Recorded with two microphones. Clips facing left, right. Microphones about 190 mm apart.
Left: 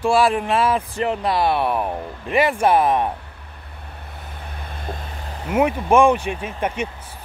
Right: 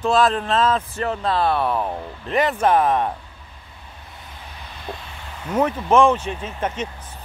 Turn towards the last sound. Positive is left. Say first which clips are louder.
# left 2 dB
turn(degrees=10)  # may be behind; listen again after turning